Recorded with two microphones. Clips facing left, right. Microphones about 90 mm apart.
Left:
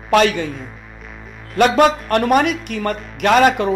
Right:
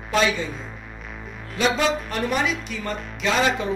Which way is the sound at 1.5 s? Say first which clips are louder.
Left 8 dB; 55° left (ahead or behind).